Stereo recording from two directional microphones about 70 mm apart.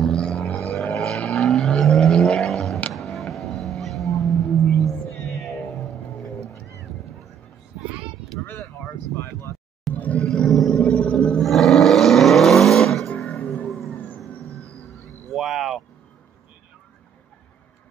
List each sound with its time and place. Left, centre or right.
0.0 s a sound: centre
0.9 s vehicle: centre
3.2 s music: centre
4.2 s music: centre
9.1 s a sound: left
9.9 s music: left
10.2 s a sound: centre
10.8 s music: centre
11.4 s vehicle: centre
13.3 s music: centre
13.7 s vehicle: centre
13.9 s music: left
14.4 s music: right
15.3 s vehicle: centre